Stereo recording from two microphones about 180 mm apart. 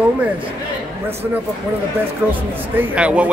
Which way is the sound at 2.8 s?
5° right (ahead or behind).